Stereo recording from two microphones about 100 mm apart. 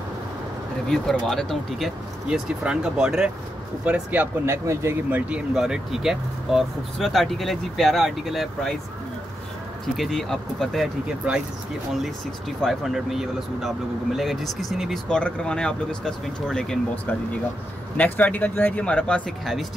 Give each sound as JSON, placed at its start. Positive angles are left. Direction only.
{"t": 0.8, "sound": "speech", "side_deg": 5}
{"t": 2.2, "sound": "speech", "side_deg": -10}
{"t": 4.5, "sound": "speech", "side_deg": -25}
{"t": 5.5, "sound": "speech", "side_deg": -5}
{"t": 9.9, "sound": "speech", "side_deg": 0}
{"t": 11.9, "sound": "speech", "side_deg": 0}
{"t": 17.9, "sound": "speech", "side_deg": 15}